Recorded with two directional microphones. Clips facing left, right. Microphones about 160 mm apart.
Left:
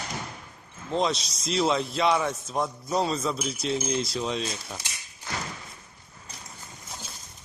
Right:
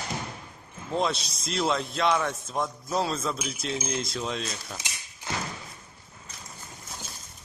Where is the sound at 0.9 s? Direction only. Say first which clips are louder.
Left 1 dB; centre (ahead or behind).